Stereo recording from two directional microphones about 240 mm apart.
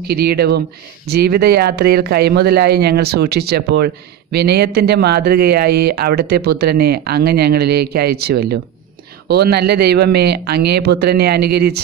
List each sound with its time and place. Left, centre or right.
0.1 s a man's voice: right